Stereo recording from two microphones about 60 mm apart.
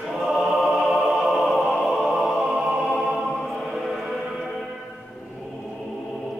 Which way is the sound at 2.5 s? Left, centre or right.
Centre.